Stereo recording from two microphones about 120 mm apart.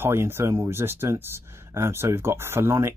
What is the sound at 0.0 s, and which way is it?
Speech, 20° right (ahead or behind).